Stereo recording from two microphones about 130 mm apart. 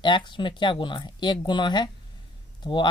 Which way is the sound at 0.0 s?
35° left (ahead or behind).